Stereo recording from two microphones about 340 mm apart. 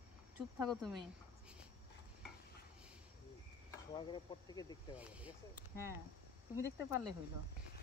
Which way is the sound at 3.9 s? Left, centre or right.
Centre.